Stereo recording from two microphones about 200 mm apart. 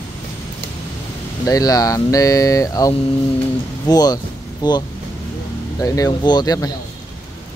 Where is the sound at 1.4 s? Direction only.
20° left (ahead or behind).